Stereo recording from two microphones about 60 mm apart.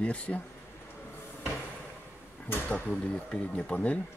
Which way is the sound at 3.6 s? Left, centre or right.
Left.